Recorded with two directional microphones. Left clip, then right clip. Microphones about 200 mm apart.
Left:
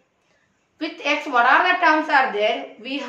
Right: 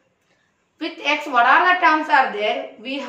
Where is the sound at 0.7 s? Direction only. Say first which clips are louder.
Right 1 dB; 20° left (ahead or behind).